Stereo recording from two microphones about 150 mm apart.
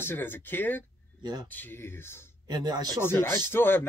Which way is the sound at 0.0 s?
15° left (ahead or behind).